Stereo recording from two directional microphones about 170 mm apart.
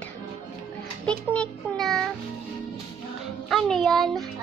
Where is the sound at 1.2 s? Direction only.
5° left (ahead or behind).